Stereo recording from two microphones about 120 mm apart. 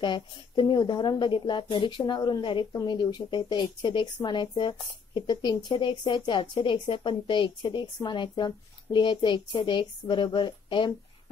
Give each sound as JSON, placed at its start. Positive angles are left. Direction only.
{"t": 0.0, "sound": "speech", "side_deg": 40}